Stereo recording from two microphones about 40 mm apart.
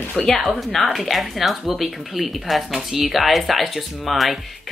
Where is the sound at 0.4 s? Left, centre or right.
Centre.